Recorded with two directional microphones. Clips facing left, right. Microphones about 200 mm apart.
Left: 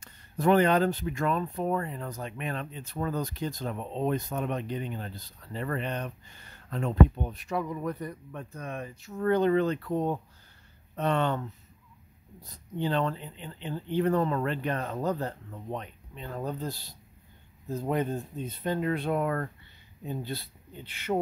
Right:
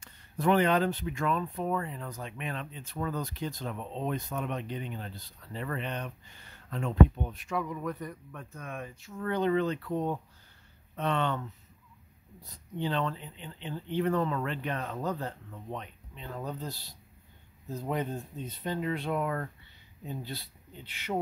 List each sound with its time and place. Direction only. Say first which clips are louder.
0.0 s speech: left 3 dB; 40° left (ahead or behind)
12.7 s speech: left 3 dB; 45° left (ahead or behind)
18.6 s speech: left 4 dB; 50° left (ahead or behind)